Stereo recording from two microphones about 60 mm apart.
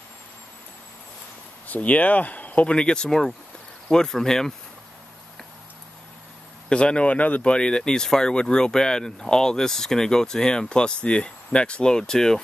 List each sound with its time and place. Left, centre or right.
1.7 s speech: left; by 4.6 s centre
6.7 s speech: centre